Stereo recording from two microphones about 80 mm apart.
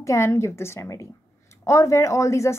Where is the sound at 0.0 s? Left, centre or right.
Left.